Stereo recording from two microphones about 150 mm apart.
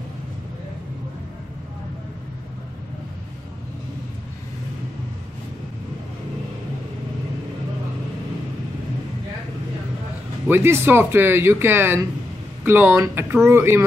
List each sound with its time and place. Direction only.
10.4 s speech: 15° right (ahead or behind)